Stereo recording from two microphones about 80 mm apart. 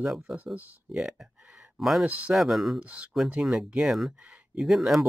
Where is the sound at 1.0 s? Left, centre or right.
Centre.